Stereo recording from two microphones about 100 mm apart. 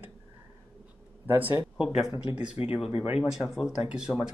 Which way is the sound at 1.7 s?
5° right (ahead or behind).